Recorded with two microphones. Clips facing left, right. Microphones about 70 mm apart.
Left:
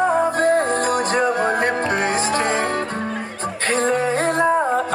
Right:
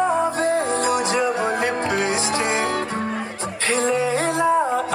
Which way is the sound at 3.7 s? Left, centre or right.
Left.